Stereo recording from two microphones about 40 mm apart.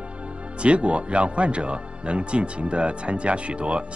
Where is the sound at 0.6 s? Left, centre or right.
Right.